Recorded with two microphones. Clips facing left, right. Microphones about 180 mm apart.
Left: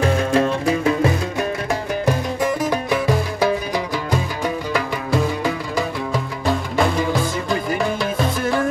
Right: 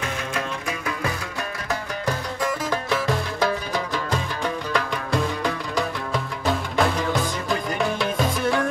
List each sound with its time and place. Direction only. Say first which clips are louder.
0.0 s music: left 11 dB; 35° left (ahead or behind)
1.7 s music: left 2 dB; 20° left (ahead or behind); by 8.6 s centre (ahead or behind)